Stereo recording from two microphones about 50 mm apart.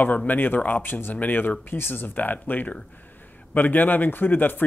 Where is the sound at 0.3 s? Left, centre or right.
Left.